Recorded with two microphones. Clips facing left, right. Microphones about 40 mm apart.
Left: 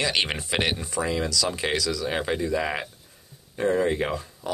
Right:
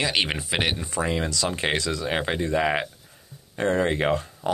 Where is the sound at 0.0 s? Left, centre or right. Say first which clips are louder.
Right 1 dB; centre.